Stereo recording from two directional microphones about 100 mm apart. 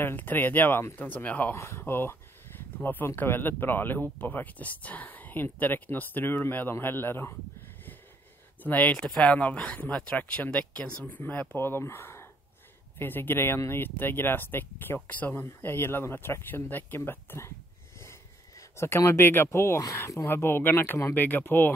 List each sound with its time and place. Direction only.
0.0 s speech: 20° left (ahead or behind)
8.6 s speech: 15° left (ahead or behind)
18.6 s speech: 30° left (ahead or behind)